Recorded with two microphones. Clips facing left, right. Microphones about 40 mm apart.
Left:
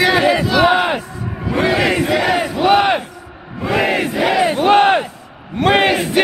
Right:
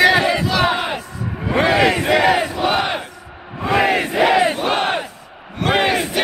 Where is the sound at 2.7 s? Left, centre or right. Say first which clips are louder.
Left 9 dB; centre.